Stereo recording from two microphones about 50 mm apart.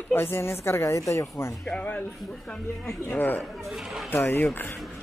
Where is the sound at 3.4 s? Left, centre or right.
Centre.